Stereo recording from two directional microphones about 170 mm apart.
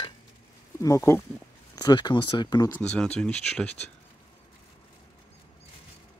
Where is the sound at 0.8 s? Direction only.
15° left (ahead or behind).